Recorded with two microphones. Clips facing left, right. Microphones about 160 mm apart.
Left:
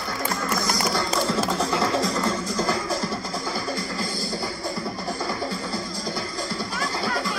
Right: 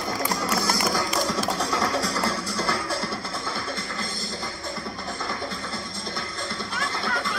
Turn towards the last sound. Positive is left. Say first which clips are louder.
# left 2 dB
turn(degrees=5)  # may be behind; listen again after turning